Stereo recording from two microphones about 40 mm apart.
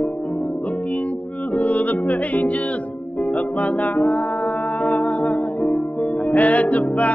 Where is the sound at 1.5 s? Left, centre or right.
Left.